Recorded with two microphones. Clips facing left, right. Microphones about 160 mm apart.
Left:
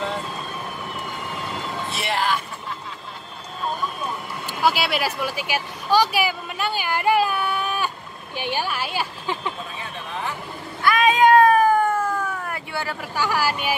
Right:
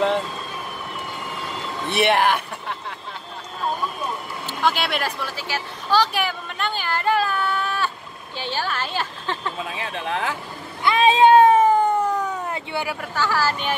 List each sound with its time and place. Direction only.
1.9 s speech: 60° right (ahead or behind)
4.5 s a woman's voice: 5° left (ahead or behind)
9.7 s speech: 90° right
10.8 s cat: 25° right (ahead or behind)
13.1 s a woman's voice: 15° left (ahead or behind)